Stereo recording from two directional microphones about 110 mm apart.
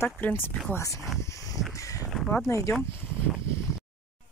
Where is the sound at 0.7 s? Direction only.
30° left (ahead or behind).